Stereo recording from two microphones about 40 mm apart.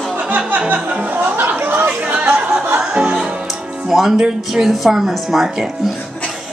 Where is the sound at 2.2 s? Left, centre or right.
Right.